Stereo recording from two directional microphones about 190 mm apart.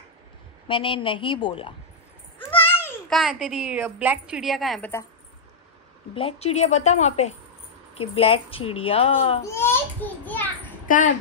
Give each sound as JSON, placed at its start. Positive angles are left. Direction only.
{"t": 0.7, "sound": "a woman's voice", "side_deg": 25}
{"t": 2.7, "sound": "a sound", "side_deg": 10}
{"t": 3.2, "sound": "a woman's voice", "side_deg": 0}
{"t": 6.1, "sound": "speech", "side_deg": 30}
{"t": 9.5, "sound": "a sound", "side_deg": 10}
{"t": 10.9, "sound": "speech", "side_deg": 45}